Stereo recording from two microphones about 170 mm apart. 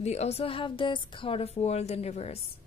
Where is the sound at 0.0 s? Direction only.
40° left (ahead or behind).